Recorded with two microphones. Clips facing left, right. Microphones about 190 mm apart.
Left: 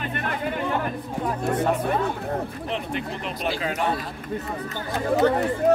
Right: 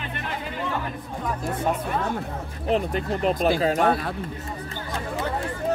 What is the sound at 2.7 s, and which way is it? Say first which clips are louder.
Speech: right 7 dB; 40° right (ahead or behind).